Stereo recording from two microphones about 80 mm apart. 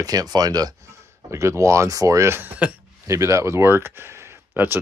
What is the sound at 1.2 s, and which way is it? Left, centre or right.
Speech, right.